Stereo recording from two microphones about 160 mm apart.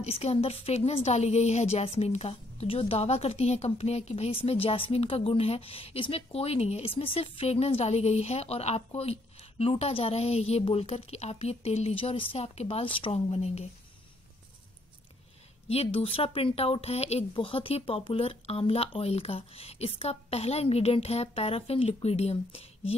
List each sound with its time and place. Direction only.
0.0 s a woman's voice: 40° left (ahead or behind)
15.7 s a woman's voice: 40° left (ahead or behind)